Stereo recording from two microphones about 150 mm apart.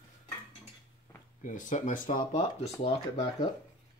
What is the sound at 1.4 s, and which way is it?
Speech, 60° left (ahead or behind).